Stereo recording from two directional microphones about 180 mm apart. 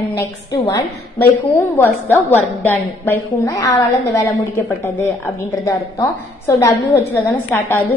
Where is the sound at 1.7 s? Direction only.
10° left (ahead or behind).